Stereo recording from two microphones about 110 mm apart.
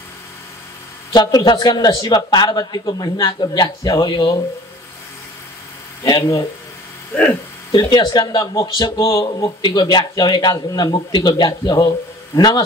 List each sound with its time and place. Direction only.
1.1 s speech: 40° left (ahead or behind)
6.0 s speech: 35° left (ahead or behind)
7.9 s speech: 40° left (ahead or behind)